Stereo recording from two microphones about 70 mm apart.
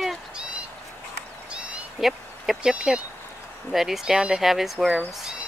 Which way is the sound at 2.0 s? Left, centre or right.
Centre.